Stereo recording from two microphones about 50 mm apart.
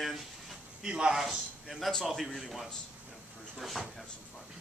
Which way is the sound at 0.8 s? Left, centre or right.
Centre.